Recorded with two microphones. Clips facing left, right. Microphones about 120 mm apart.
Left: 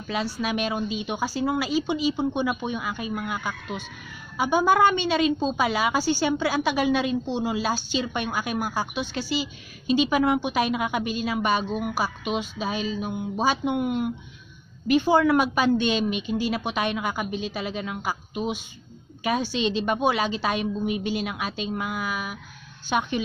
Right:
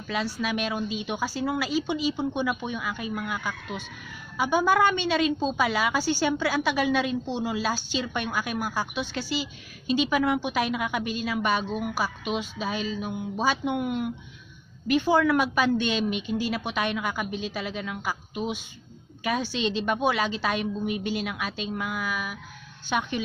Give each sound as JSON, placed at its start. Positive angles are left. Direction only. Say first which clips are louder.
{"t": 0.0, "sound": "a woman's voice", "louder": "left 1 dB", "side_deg": 25}